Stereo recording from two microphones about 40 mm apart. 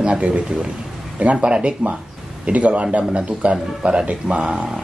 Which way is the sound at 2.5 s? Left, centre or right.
Right.